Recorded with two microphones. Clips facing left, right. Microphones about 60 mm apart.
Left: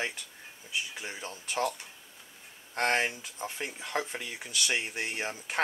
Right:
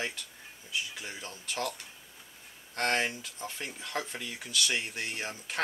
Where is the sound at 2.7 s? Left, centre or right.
Centre.